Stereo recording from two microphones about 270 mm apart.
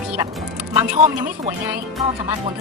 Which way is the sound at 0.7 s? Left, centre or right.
Right.